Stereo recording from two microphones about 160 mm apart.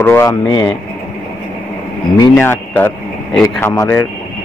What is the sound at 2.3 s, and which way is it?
A man's voice, 10° left (ahead or behind).